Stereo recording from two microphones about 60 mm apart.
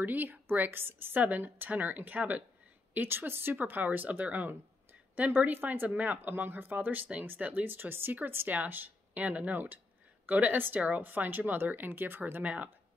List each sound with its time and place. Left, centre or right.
0.0 s speech: right